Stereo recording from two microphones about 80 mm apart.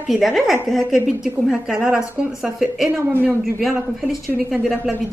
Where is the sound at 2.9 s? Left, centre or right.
Right.